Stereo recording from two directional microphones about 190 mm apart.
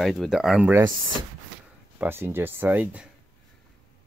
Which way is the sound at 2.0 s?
10° right (ahead or behind).